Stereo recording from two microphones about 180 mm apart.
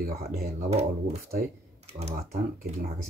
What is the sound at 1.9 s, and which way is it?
Speech, 35° right (ahead or behind).